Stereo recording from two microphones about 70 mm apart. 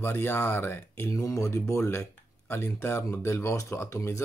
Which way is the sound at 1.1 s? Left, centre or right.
Left.